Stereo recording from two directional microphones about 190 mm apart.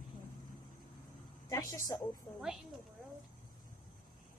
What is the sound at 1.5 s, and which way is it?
Speech, 15° left (ahead or behind).